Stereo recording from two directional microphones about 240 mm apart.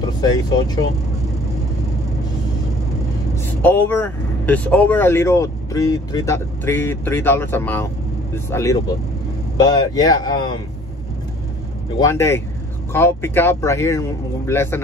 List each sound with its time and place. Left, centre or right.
0.0 s speech: centre
3.6 s speech: centre
12.0 s speech: centre